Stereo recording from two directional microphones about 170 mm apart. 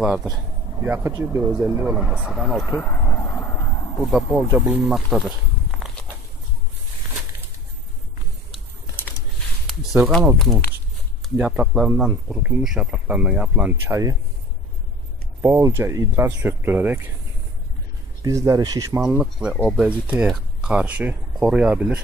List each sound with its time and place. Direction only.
0.0 s speech: centre (ahead or behind)
0.8 s speech: 15° right (ahead or behind); by 2.8 s centre (ahead or behind)
2.8 s vehicle: 15° left (ahead or behind)
4.6 s speech: 5° right (ahead or behind)
9.7 s a sound: centre (ahead or behind)
10.4 s speech: centre (ahead or behind); by 14.1 s 15° right (ahead or behind)
15.4 s speech: 15° right (ahead or behind)
18.2 s speech: 20° right (ahead or behind)
19.0 s speech: 5° right (ahead or behind)